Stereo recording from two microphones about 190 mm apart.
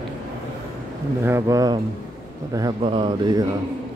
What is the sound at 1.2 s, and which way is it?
A man's voice, 15° right (ahead or behind).